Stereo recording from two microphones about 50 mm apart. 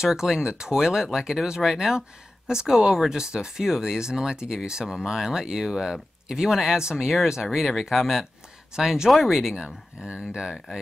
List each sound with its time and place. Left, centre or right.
0.0 s speech: centre
9.6 s speech: right